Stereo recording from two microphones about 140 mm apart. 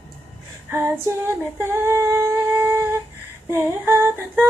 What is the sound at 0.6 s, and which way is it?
Female singing, 15° right (ahead or behind).